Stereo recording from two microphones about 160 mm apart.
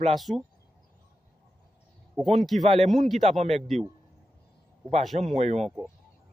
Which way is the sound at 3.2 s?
45° right (ahead or behind).